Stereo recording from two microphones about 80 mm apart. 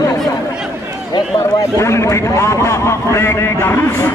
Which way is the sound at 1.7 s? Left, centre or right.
Left.